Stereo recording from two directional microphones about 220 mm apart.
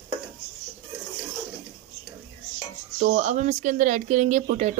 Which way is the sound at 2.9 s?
30° right (ahead or behind).